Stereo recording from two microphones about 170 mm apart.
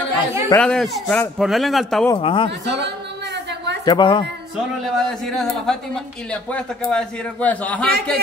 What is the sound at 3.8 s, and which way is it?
Speech, 25° left (ahead or behind).